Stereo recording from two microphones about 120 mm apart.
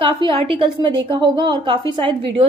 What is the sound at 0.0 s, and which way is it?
A woman's voice, 50° right (ahead or behind).